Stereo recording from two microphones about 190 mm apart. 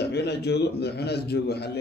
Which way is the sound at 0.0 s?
60° left (ahead or behind).